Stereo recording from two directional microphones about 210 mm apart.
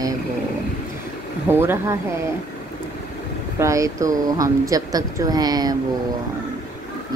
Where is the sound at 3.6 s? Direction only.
15° right (ahead or behind).